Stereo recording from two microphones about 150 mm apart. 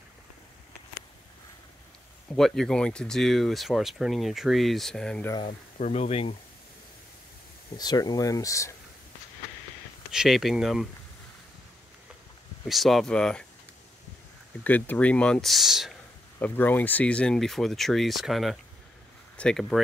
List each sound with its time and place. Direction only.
2.3 s speech: 5° left (ahead or behind)
5.5 s speech: 50° left (ahead or behind)
7.7 s speech: 25° left (ahead or behind)
10.1 s speech: centre (ahead or behind)
12.6 s speech: centre (ahead or behind)
14.6 s speech: 10° left (ahead or behind)
16.3 s speech: 10° left (ahead or behind)